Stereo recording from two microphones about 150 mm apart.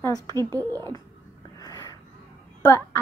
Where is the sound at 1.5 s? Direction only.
25° left (ahead or behind).